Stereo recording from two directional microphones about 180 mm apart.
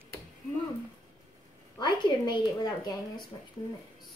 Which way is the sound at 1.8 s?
25° left (ahead or behind).